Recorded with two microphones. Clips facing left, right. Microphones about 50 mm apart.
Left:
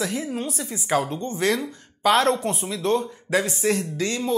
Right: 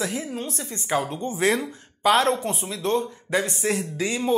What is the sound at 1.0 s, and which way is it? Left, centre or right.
Speech, centre.